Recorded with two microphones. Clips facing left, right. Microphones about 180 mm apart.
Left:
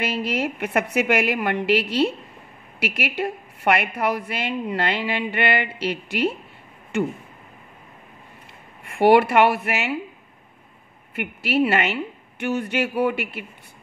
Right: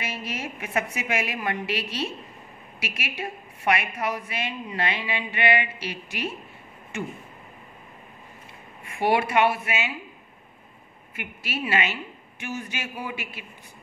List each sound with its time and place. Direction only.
0.0 s a woman's voice: 65° left (ahead or behind)
8.8 s speech: 65° left (ahead or behind)
11.1 s a woman's voice: 60° left (ahead or behind)